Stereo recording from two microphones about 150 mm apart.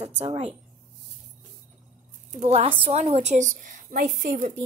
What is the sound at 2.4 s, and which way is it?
A woman's voice, 45° right (ahead or behind).